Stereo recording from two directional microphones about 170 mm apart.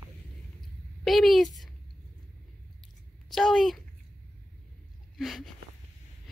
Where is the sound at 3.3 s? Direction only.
Centre (ahead or behind).